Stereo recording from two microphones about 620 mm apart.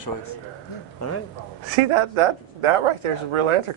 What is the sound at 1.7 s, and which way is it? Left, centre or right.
Speech, right.